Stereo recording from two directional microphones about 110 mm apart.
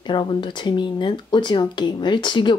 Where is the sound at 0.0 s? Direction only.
45° left (ahead or behind).